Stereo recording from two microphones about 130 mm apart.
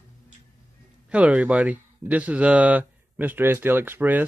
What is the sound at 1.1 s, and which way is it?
Speech, 10° right (ahead or behind).